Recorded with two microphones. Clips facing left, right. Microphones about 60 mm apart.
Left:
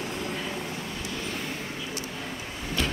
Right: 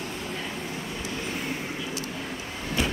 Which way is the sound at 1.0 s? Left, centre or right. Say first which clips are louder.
Right 3 dB; centre.